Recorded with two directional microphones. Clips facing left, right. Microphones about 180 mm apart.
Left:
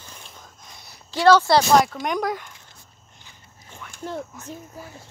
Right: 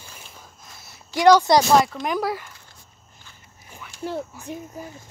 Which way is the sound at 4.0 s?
10° right (ahead or behind).